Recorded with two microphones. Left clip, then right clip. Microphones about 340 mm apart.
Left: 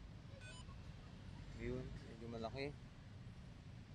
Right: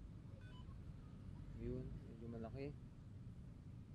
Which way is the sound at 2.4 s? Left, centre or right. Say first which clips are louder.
Left 5 dB; left.